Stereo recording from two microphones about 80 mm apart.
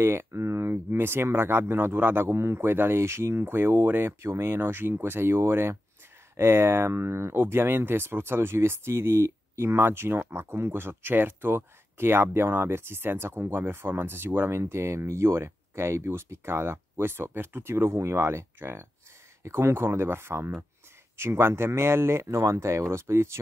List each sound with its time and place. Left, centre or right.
0.0 s speech: right